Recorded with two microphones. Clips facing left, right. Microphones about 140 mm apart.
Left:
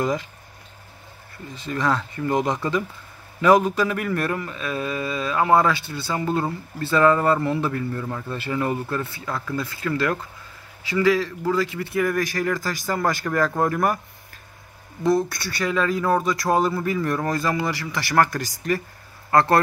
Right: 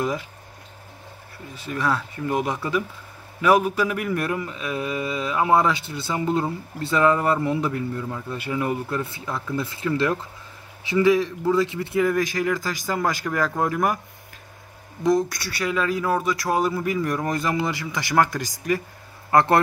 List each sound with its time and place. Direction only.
1.5 s a man's voice: 5° right (ahead or behind)
15.0 s a man's voice: 15° right (ahead or behind)